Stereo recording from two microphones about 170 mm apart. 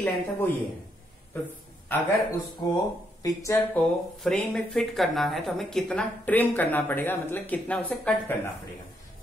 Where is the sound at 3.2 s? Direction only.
20° left (ahead or behind).